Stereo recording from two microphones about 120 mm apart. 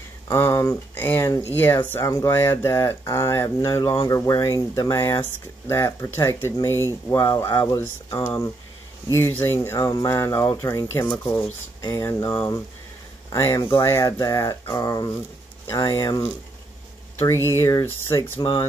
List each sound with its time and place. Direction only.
0.3 s speech: 20° left (ahead or behind)
14.0 s speech: 30° left (ahead or behind)
17.5 s speech: 25° left (ahead or behind)